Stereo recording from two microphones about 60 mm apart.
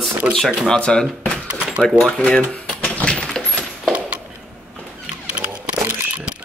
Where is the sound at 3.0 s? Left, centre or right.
Centre.